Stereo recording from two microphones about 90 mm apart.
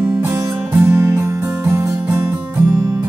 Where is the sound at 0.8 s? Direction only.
30° right (ahead or behind).